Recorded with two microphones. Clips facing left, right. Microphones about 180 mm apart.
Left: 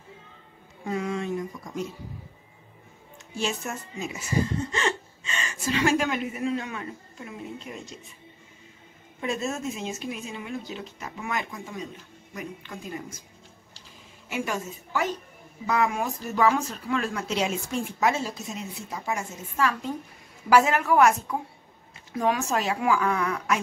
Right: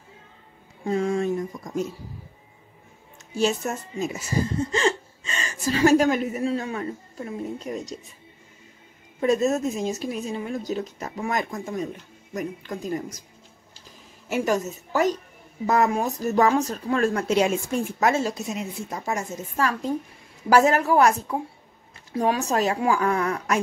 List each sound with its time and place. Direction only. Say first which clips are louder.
0.8 s a sound: right 6 dB; 40° right (ahead or behind)
3.3 s a woman's voice: right 6 dB; 40° right (ahead or behind)
9.2 s a woman's voice: right 8 dB; 40° right (ahead or behind)
14.3 s a woman's voice: right 7 dB; 40° right (ahead or behind)
18.2 s speech: right 6 dB; 70° right (ahead or behind)
18.8 s a woman's voice: right 3 dB; 45° right (ahead or behind)